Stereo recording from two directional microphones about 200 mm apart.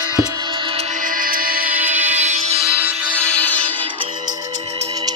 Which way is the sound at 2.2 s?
35° right (ahead or behind).